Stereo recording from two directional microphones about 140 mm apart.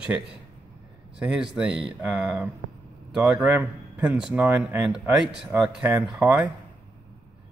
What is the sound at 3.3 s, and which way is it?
Speech, 15° right (ahead or behind).